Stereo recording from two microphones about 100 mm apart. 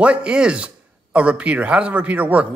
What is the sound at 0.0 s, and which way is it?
Speech, 10° right (ahead or behind).